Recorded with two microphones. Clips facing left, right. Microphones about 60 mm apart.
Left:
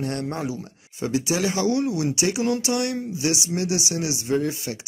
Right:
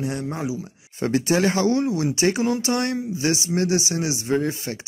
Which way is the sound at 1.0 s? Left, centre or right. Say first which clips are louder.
Right 4 dB; right.